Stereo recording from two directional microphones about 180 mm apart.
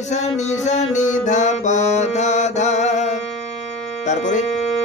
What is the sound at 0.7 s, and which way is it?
Music, 40° left (ahead or behind).